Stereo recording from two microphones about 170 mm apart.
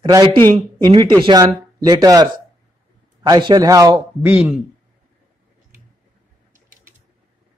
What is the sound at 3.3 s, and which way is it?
Speech, 25° right (ahead or behind).